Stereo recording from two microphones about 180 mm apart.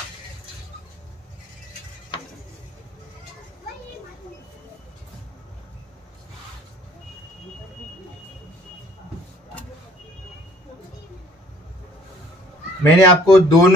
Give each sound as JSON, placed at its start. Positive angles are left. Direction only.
{"t": 12.8, "sound": "speech", "side_deg": 20}